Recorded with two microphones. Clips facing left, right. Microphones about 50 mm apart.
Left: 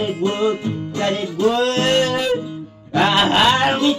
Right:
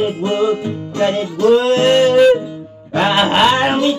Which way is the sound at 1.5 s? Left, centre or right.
Centre.